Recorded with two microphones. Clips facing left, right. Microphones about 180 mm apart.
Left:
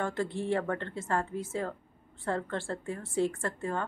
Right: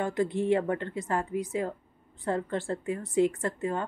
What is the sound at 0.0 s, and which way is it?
A woman's voice, 15° right (ahead or behind).